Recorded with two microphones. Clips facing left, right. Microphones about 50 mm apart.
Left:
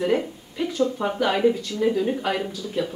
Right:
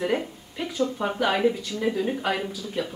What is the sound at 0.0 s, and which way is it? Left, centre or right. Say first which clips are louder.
Speech: left 3 dB; centre.